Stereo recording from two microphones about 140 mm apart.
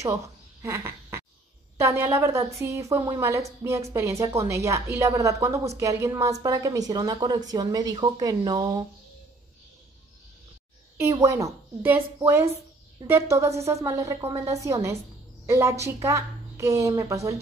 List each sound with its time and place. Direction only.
0.0 s a sound: 20° right (ahead or behind)
1.8 s a woman's voice: 20° right (ahead or behind)
11.0 s a woman's voice: 20° right (ahead or behind)